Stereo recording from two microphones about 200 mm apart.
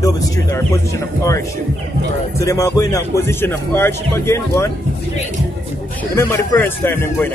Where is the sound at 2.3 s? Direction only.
15° left (ahead or behind).